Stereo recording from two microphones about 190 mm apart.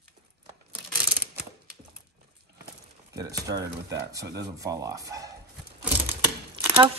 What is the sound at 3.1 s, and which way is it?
Speech, 20° right (ahead or behind).